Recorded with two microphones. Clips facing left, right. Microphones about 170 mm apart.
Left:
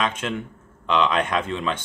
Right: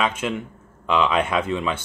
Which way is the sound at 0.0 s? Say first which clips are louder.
Right 2 dB; 10° right (ahead or behind).